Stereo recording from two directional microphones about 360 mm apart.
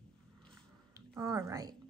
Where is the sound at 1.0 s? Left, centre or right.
Centre.